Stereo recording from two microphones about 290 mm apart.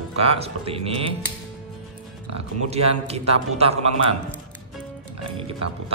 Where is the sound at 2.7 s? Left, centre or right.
Right.